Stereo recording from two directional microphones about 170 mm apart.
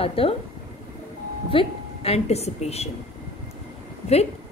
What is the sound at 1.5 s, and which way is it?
A woman's voice, 35° left (ahead or behind).